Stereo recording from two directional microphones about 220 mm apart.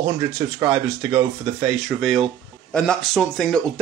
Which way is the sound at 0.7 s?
Centre (ahead or behind).